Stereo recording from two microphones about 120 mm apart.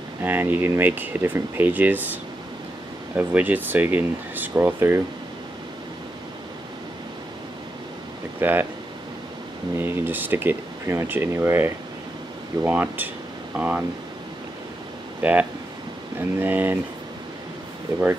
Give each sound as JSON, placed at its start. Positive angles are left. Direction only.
{"t": 0.2, "sound": "speech", "side_deg": -15}
{"t": 3.2, "sound": "speech", "side_deg": -15}
{"t": 8.4, "sound": "speech", "side_deg": -15}
{"t": 9.8, "sound": "speech", "side_deg": -15}
{"t": 15.2, "sound": "speech", "side_deg": -10}